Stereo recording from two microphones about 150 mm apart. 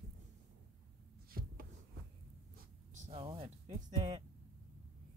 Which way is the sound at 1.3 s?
80° right.